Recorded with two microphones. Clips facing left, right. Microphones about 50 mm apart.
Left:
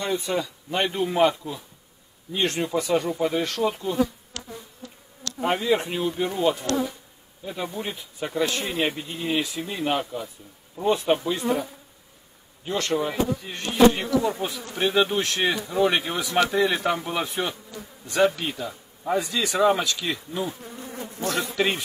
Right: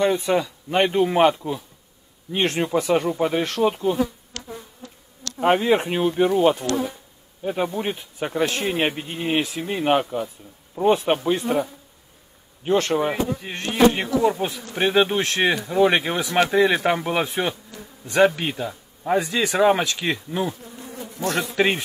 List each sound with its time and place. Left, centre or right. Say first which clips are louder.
0.0 s speech: right 6 dB; right
5.4 s speech: right 5 dB; right
7.6 s speech: right 6 dB; right
12.6 s speech: right 5 dB; right